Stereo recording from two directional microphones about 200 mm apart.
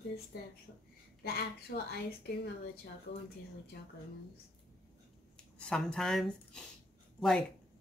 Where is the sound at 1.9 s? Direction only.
50° left (ahead or behind).